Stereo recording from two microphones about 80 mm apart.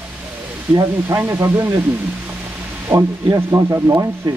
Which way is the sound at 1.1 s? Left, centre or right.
Right.